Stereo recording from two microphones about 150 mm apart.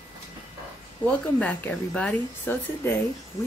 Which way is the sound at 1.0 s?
10° left (ahead or behind).